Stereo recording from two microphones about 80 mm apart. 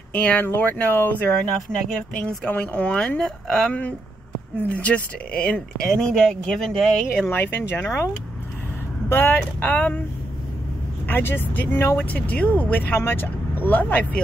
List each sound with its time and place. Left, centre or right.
0.1 s speech: centre
4.6 s speech: centre
7.2 s speech: left
9.1 s speech: left
11.1 s speech: left